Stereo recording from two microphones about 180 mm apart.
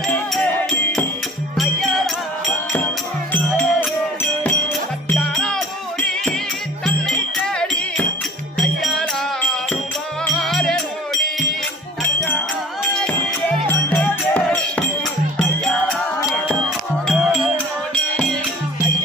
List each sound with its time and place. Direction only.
0.1 s music: 10° left (ahead or behind)
4.2 s music: 5° left (ahead or behind)
10.2 s music: centre (ahead or behind)
13.7 s music: 5° left (ahead or behind)
17.1 s music: centre (ahead or behind)